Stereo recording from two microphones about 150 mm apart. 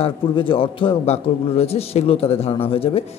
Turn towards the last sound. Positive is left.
turn(degrees=40)  # may be behind; listen again after turning